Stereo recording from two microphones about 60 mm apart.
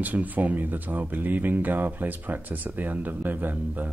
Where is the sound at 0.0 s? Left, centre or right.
Right.